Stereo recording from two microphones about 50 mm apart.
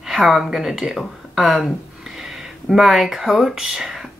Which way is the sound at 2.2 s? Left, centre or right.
Centre.